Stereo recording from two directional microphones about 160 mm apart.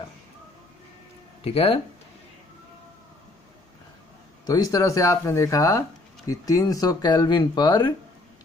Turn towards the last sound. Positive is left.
turn(degrees=30)  # may be behind; listen again after turning